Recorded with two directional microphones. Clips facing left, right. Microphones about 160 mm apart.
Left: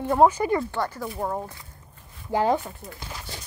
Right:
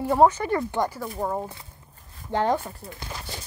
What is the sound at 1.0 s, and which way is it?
Speech, centre (ahead or behind).